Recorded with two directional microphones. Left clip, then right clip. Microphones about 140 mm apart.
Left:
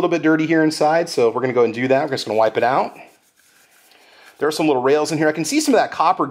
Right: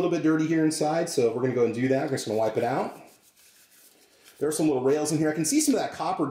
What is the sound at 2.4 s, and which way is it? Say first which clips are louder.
Speech: left 11 dB; 15° left (ahead or behind).